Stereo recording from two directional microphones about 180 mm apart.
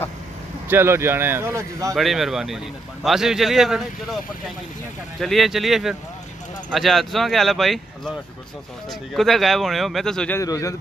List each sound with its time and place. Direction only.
0.7 s speech: 15° right (ahead or behind)
2.0 s a man's voice: centre (ahead or behind)
5.2 s a man's voice: centre (ahead or behind)
9.1 s a man's voice: centre (ahead or behind)
10.4 s a man's voice: 20° left (ahead or behind)